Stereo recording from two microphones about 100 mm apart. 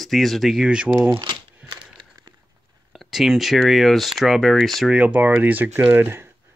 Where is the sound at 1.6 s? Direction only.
10° right (ahead or behind).